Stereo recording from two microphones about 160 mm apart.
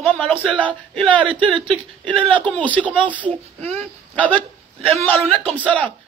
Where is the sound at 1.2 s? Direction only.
30° right (ahead or behind).